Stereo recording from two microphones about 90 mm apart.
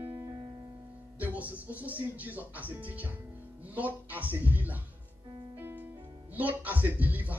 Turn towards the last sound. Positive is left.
turn(degrees=-20)  # may be behind; listen again after turning